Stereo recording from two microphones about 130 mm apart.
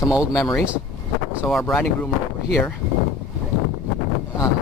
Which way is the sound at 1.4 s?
Centre (ahead or behind).